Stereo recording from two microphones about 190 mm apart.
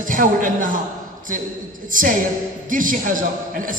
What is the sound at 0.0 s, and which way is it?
Speech, 45° right (ahead or behind).